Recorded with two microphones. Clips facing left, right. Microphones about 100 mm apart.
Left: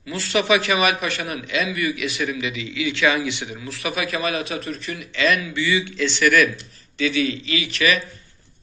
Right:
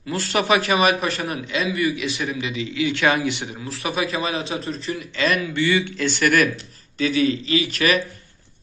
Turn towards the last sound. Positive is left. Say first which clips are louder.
# right 2 dB
turn(degrees=-45)  # may be behind; listen again after turning